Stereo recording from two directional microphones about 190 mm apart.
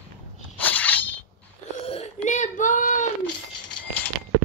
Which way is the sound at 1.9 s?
35° left (ahead or behind).